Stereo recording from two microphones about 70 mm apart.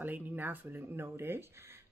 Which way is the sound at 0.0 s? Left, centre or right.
Right.